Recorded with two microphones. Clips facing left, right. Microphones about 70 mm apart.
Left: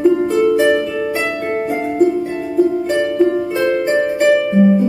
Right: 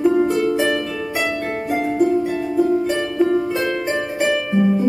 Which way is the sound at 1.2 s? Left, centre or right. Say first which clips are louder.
Left 3 dB; centre.